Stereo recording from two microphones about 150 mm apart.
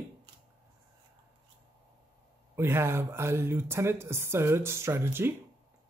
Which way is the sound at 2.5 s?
15° right (ahead or behind).